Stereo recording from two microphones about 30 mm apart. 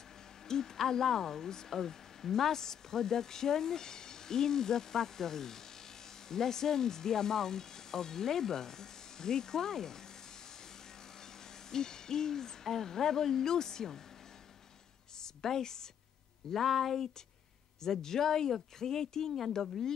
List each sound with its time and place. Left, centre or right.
0.5 s speech: centre
11.7 s speech: centre
15.2 s speech: centre
16.5 s speech: centre
17.8 s speech: centre